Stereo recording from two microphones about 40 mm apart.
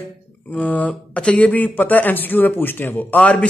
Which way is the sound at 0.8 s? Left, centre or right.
Left.